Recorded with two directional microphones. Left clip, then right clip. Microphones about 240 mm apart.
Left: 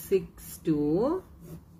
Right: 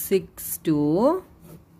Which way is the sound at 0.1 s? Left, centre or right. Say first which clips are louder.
Right 4 dB; right.